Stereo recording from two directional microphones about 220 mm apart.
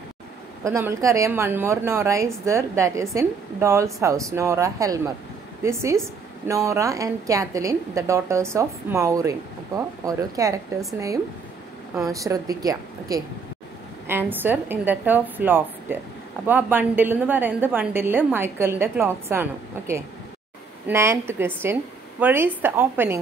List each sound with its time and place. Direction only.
0.7 s a woman's voice: 10° right (ahead or behind)
12.1 s a woman's voice: 15° right (ahead or behind)